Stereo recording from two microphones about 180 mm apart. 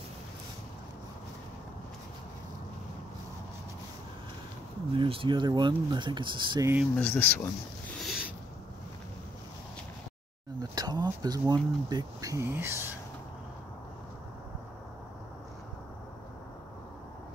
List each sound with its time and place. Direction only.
4.9 s speech: 30° right (ahead or behind)
7.0 s speech: 10° left (ahead or behind)
8.0 s a sound: 5° right (ahead or behind)
10.6 s speech: 20° right (ahead or behind)